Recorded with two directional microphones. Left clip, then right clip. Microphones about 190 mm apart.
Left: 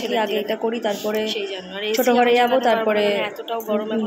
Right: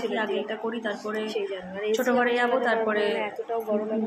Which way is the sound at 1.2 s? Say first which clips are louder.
Left 4 dB; centre (ahead or behind).